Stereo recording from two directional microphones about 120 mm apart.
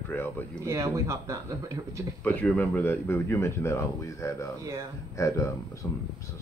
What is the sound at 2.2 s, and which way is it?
Speech, 15° left (ahead or behind).